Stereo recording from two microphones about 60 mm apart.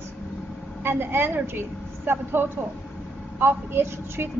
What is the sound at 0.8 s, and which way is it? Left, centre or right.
A woman's voice, right.